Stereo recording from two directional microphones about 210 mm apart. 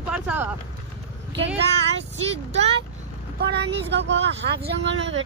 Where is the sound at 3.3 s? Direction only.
55° right (ahead or behind).